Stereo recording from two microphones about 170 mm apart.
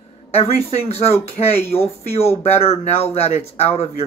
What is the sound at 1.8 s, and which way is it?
Speech, 35° left (ahead or behind).